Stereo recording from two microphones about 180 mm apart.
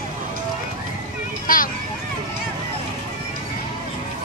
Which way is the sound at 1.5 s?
50° left (ahead or behind).